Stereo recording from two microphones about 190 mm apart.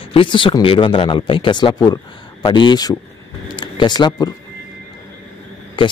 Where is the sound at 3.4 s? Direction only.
25° left (ahead or behind).